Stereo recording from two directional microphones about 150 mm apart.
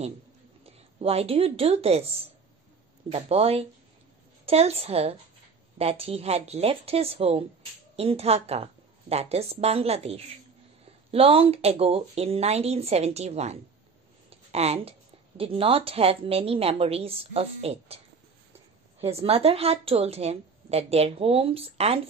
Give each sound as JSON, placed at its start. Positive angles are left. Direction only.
{"t": 0.7, "sound": "speech", "side_deg": -40}
{"t": 3.1, "sound": "a woman's voice", "side_deg": -45}